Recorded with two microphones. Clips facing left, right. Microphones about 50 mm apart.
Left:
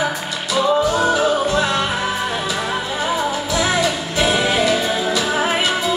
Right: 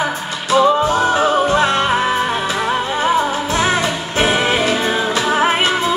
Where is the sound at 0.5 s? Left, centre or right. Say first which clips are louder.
Right 4 dB; right.